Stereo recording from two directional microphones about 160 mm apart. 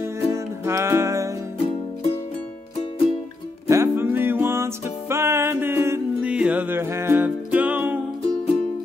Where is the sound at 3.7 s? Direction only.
15° right (ahead or behind).